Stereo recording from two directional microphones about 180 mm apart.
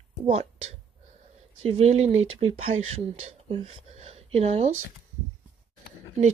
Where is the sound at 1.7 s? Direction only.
35° right (ahead or behind).